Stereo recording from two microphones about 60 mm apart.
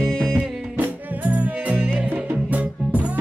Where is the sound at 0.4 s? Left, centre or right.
Right.